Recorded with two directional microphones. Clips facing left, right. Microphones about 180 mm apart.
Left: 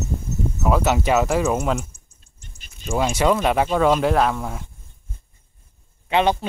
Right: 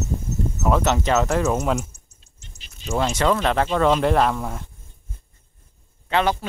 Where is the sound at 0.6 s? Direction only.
5° left (ahead or behind).